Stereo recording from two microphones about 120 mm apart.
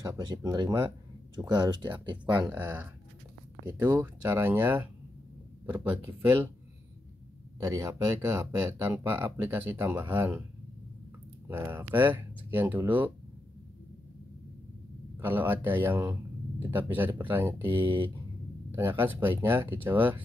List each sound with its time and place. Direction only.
0.0 s speech: 30° right (ahead or behind)
2.5 s speech: 15° right (ahead or behind)
3.8 s speech: 30° right (ahead or behind)
4.3 s speech: 15° right (ahead or behind)
7.6 s speech: 25° right (ahead or behind)
11.4 s speech: 20° right (ahead or behind)
15.1 s speech: 20° right (ahead or behind)
18.8 s speech: 20° right (ahead or behind)